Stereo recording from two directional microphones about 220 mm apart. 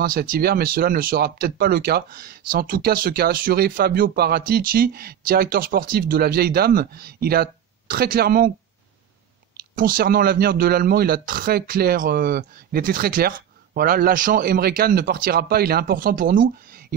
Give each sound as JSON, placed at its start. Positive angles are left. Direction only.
{"t": 0.0, "sound": "speech", "side_deg": -40}
{"t": 9.8, "sound": "a man's voice", "side_deg": -40}